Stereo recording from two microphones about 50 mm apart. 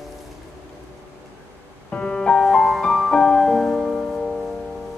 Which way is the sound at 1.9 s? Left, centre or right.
Centre.